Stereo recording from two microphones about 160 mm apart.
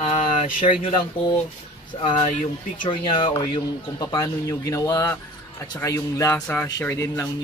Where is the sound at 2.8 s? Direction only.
30° left (ahead or behind).